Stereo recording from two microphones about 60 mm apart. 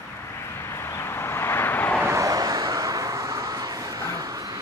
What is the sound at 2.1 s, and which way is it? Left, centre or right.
Vehicle, right.